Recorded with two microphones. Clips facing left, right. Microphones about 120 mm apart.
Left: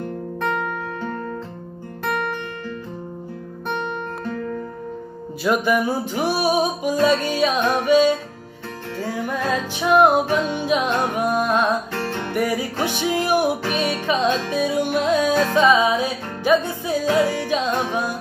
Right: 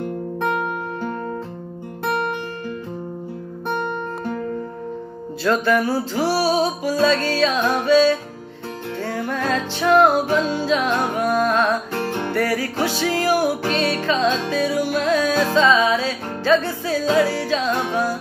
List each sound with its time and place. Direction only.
0.4 s music: 15° right (ahead or behind)
3.6 s music: 20° right (ahead or behind)
5.4 s music: 15° left (ahead or behind)
11.9 s music: 15° right (ahead or behind)
12.3 s music: 15° left (ahead or behind)